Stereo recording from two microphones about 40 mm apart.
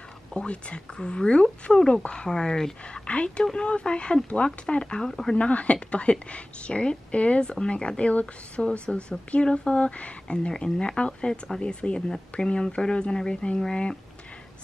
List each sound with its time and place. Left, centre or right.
0.4 s speech: left
2.8 s speech: left; by 5.3 s centre
5.3 s a woman's voice: left
10.2 s speech: left